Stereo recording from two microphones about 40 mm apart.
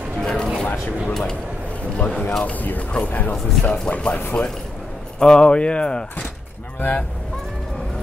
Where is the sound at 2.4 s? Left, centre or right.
Left.